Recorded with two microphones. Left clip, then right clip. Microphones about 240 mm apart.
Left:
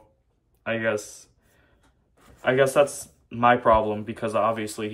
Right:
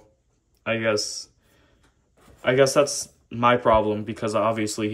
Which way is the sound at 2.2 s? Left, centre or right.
Centre.